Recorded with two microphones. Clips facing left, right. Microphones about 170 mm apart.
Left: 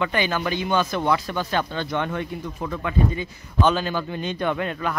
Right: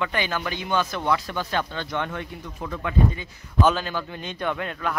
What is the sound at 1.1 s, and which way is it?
Speech, 15° left (ahead or behind).